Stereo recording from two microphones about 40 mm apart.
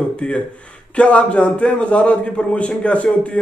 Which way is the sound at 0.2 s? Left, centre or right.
Left.